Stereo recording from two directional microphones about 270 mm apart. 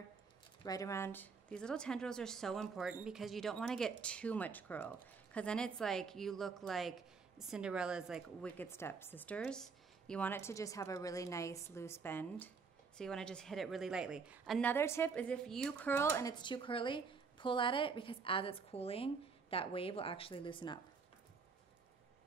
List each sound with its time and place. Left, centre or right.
0.7 s a woman's voice: centre